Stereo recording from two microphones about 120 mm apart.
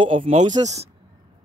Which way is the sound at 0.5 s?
30° right (ahead or behind).